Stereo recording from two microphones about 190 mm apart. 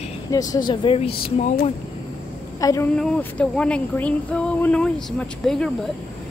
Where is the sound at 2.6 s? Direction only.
20° left (ahead or behind).